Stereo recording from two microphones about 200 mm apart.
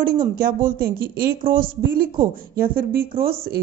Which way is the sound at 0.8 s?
50° right (ahead or behind).